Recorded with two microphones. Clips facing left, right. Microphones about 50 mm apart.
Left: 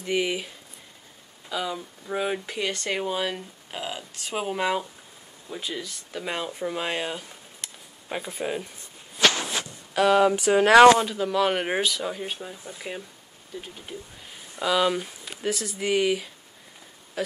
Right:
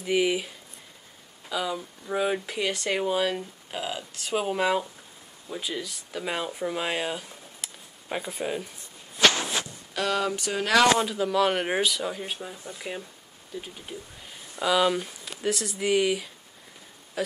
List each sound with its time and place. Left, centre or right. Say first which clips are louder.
0.0 s speech: right 2 dB; centre
1.5 s speech: even; centre
9.9 s speech: left 7 dB; centre
10.6 s speech: left 8 dB; left
11.0 s speech: even; centre